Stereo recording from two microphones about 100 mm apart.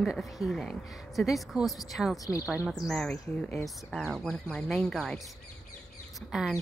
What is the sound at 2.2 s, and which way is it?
Speech, 35° left (ahead or behind).